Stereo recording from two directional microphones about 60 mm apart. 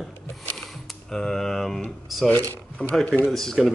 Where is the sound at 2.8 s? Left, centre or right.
Centre.